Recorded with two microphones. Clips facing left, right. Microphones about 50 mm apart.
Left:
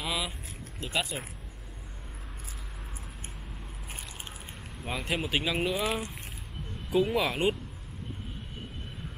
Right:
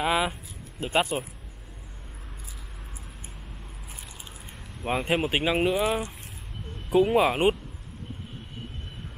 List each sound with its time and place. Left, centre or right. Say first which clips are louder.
0.0 s vehicle: right 8 dB; right
0.9 s speech: right 7 dB; right
5.0 s speech: right 4 dB; right
6.9 s speech: right 6 dB; centre